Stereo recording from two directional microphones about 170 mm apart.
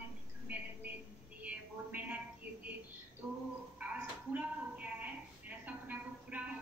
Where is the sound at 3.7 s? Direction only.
10° right (ahead or behind).